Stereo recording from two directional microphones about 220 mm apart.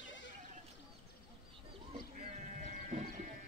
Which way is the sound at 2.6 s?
30° right (ahead or behind).